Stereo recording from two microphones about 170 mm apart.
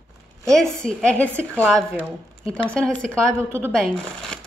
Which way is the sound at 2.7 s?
5° left (ahead or behind).